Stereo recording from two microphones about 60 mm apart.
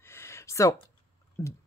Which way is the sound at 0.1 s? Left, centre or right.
Left.